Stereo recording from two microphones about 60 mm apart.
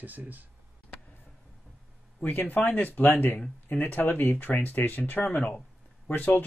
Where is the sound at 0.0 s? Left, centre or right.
Right.